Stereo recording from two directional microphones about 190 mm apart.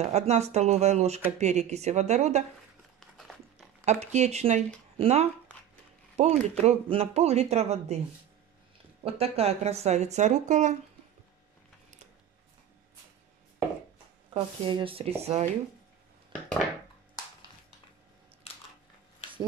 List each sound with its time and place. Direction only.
0.0 s speech: 35° right (ahead or behind)
3.8 s speech: 35° right (ahead or behind)
9.0 s speech: 30° right (ahead or behind)
14.3 s speech: 25° right (ahead or behind)